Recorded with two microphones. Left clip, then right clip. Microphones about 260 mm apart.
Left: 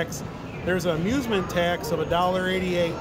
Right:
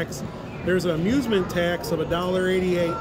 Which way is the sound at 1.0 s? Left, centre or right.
Left.